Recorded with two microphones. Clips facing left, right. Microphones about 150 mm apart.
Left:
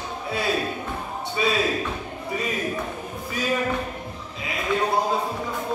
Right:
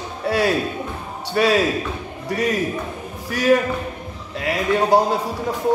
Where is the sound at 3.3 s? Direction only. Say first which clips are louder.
Right 10 dB; 90° right.